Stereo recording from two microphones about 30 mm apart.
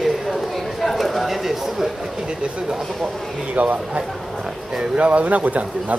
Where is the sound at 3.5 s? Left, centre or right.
Right.